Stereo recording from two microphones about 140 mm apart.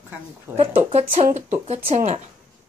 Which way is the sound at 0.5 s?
40° right (ahead or behind).